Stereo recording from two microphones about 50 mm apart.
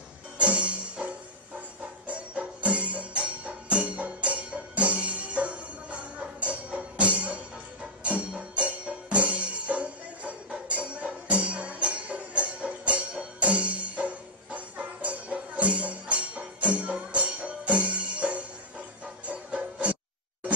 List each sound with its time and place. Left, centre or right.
0.4 s music: right
2.0 s music: right
8.4 s music: right